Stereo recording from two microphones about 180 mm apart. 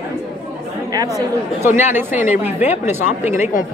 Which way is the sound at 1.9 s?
10° right (ahead or behind).